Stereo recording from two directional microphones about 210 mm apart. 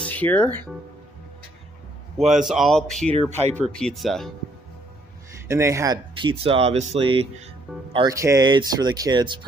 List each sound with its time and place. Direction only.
0.0 s speech: 5° left (ahead or behind)
2.1 s speech: centre (ahead or behind)
3.1 s speech: 25° right (ahead or behind)
3.5 s speech: 5° left (ahead or behind)
5.5 s speech: 15° right (ahead or behind)